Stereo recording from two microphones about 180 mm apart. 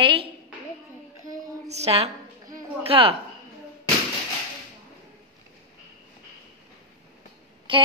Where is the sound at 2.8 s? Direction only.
30° right (ahead or behind).